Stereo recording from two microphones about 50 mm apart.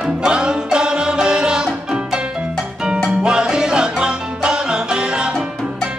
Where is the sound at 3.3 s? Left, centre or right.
Centre.